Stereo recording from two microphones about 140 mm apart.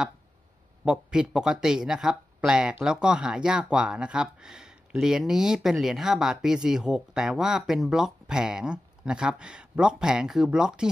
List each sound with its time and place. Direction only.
0.8 s speech: 5° right (ahead or behind)